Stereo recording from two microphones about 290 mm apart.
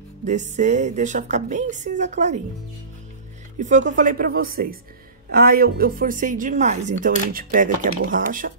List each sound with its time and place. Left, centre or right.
0.2 s speech: right
3.5 s speech: right